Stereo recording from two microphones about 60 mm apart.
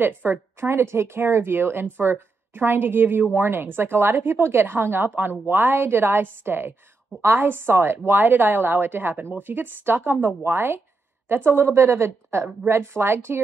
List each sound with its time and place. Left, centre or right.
0.0 s a woman's voice: right
0.6 s a woman's voice: right